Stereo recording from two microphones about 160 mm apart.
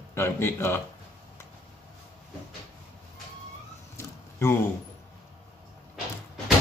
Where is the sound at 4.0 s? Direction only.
15° left (ahead or behind).